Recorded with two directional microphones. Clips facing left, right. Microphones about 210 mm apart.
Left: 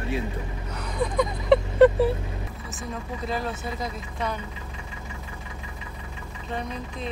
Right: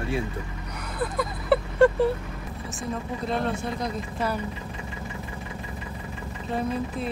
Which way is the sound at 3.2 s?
Centre (ahead or behind).